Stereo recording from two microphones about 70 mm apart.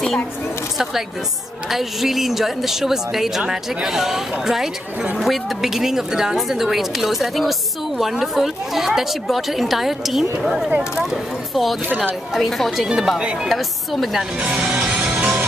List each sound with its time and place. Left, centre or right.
1.7 s a woman's voice: centre
12.8 s speech: centre
13.5 s a woman's voice: centre
14.4 s music: centre